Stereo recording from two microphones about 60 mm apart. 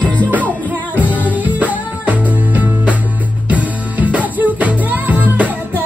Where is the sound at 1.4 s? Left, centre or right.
Right.